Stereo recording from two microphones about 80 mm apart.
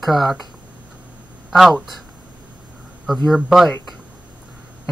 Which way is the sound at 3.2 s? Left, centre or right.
Centre.